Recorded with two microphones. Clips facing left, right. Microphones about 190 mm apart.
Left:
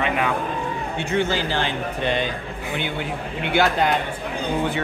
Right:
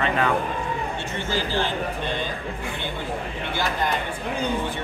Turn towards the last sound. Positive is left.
turn(degrees=70)  # may be behind; listen again after turning